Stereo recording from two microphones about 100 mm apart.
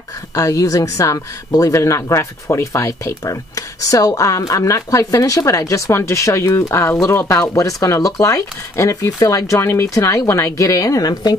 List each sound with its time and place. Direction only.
0.3 s speech: 35° left (ahead or behind)